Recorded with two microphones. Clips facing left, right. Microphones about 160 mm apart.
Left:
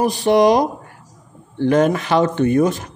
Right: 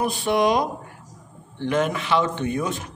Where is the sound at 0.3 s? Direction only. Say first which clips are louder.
Left 7 dB; 40° left (ahead or behind).